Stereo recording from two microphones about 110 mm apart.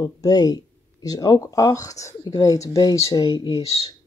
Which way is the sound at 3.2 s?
45° left (ahead or behind).